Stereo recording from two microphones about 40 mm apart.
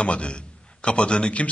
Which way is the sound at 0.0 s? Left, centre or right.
Left.